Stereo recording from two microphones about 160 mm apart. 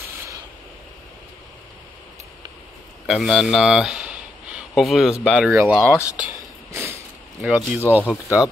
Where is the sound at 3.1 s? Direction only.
Centre (ahead or behind).